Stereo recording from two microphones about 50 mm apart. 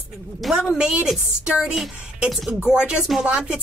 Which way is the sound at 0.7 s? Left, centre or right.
Right.